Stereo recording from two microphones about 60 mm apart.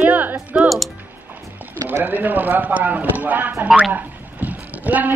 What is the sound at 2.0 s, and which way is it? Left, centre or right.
Speech, right.